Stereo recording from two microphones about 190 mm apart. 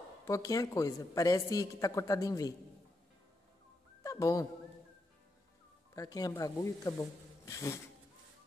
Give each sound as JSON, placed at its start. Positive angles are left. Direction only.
{"t": 0.2, "sound": "a man's voice", "side_deg": 15}
{"t": 4.0, "sound": "a sound", "side_deg": 15}
{"t": 5.9, "sound": "a man's voice", "side_deg": 20}